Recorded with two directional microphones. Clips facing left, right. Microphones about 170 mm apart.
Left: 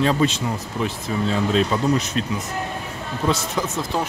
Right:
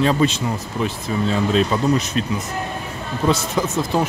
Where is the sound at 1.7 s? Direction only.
25° right (ahead or behind).